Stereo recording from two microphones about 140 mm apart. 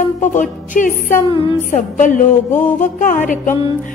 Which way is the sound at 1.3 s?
40° left (ahead or behind).